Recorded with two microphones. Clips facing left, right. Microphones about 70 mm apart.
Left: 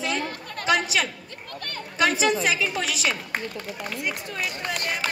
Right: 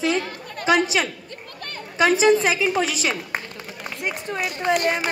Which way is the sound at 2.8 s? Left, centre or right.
Centre.